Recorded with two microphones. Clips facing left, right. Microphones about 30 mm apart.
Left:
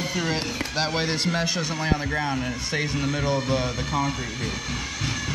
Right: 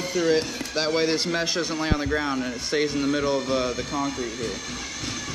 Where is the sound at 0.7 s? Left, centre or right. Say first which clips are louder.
Right 3 dB; centre.